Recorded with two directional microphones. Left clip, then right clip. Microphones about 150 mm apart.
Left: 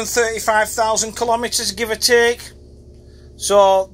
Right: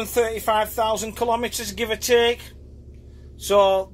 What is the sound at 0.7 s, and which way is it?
A man's voice, 10° right (ahead or behind).